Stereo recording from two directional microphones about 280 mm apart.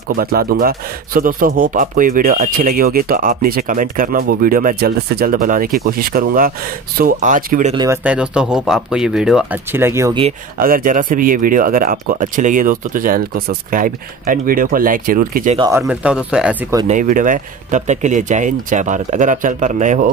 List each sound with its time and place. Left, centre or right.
0.1 s a man's voice: right
7.7 s speech: centre
10.2 s speech: right
15.6 s speech: centre
16.8 s speech: right